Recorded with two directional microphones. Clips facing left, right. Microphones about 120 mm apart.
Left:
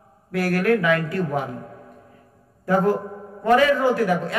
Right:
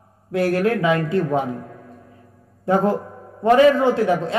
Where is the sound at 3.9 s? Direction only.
25° right (ahead or behind).